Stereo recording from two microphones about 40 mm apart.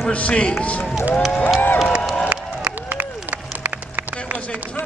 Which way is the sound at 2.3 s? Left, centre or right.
Right.